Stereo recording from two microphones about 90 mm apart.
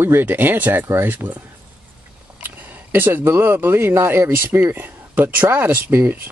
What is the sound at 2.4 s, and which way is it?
Speech, 20° right (ahead or behind).